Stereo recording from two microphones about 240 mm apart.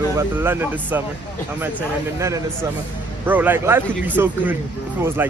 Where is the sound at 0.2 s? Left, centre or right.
Centre.